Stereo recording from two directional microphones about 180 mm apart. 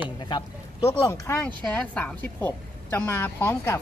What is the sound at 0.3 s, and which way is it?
Speech, 25° left (ahead or behind).